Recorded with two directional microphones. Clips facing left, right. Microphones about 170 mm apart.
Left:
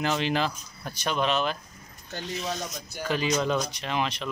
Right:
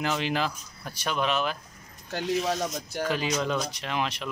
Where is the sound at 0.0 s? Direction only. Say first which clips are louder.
Left 1 dB; 5° right (ahead or behind).